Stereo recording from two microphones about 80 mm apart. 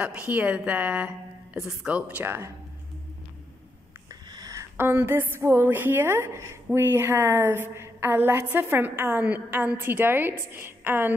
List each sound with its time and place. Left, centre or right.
0.0 s a woman's voice: centre
1.6 s a woman's voice: centre; by 2.5 s right
4.1 s a sound: right
4.7 s a woman's voice: right